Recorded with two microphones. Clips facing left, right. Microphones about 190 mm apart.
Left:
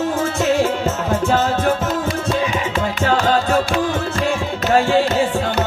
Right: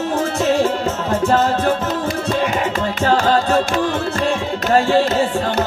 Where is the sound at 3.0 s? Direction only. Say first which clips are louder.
Right 2 dB; 35° right (ahead or behind).